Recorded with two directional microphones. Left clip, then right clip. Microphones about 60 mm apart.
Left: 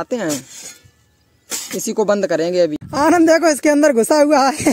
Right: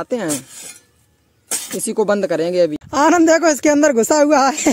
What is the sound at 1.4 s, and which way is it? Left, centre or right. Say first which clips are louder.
Speech: even; centre.